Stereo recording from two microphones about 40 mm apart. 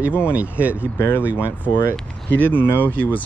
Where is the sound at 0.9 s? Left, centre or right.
Left.